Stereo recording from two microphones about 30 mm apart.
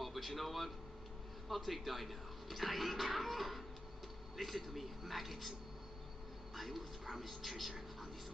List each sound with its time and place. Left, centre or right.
0.0 s a man's voice: centre
6.5 s speech: centre